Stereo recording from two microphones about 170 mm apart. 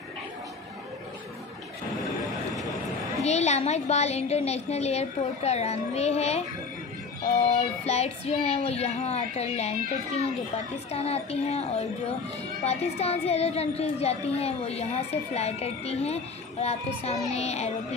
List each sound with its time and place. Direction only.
3.2 s speech: 40° left (ahead or behind)
7.5 s speech: 40° left (ahead or behind)